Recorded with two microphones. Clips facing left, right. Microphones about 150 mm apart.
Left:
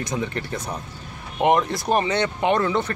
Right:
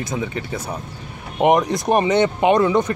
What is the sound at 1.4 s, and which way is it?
Speech, 15° right (ahead or behind).